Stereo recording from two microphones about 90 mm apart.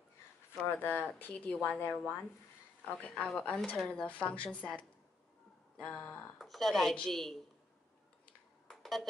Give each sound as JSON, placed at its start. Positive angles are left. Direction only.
{"t": 0.7, "sound": "speech", "side_deg": 20}
{"t": 6.3, "sound": "a woman's voice", "side_deg": 0}
{"t": 8.6, "sound": "a sound", "side_deg": 0}